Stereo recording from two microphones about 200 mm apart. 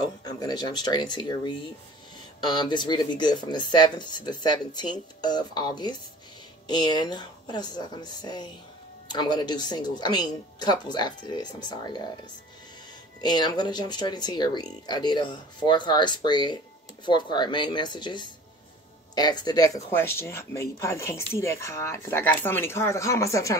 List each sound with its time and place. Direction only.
0.2 s speech: 20° left (ahead or behind)
13.2 s speech: 20° left (ahead or behind)